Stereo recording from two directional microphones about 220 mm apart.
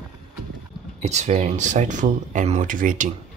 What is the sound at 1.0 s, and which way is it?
Speech, 30° right (ahead or behind).